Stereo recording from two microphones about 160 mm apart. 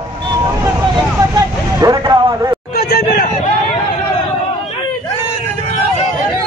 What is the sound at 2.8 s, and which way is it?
Hubbub, 70° left (ahead or behind).